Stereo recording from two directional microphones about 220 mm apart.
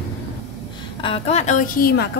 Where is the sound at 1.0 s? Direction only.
25° left (ahead or behind); by 2.0 s 45° left (ahead or behind).